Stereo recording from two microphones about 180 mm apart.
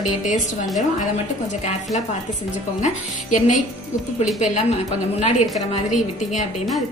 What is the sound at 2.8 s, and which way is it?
Speech, 45° left (ahead or behind).